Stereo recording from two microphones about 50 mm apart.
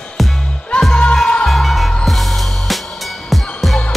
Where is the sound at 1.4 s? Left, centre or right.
Centre.